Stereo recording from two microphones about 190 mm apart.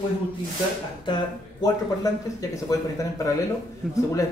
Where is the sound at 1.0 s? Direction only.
25° left (ahead or behind).